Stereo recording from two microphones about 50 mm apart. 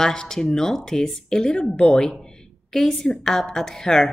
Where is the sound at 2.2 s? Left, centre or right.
Centre.